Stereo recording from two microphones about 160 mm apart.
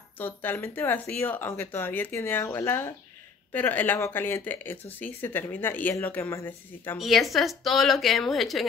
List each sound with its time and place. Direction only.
0.2 s speech: 10° left (ahead or behind)
7.0 s speech: centre (ahead or behind)